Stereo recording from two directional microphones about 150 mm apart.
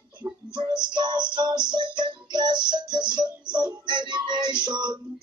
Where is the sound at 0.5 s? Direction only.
30° right (ahead or behind).